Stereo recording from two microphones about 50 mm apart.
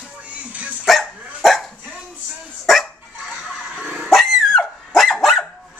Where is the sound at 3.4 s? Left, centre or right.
Centre.